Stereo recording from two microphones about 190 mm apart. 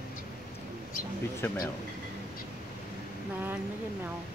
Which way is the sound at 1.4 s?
10° left (ahead or behind).